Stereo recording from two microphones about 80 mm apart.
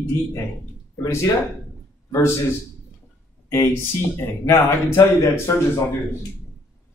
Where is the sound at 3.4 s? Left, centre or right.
Left.